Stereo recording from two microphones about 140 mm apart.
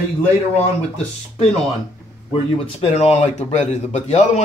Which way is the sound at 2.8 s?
45° left (ahead or behind).